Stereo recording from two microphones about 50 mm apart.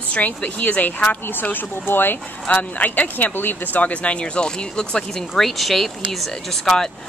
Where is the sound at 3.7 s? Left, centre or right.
Left.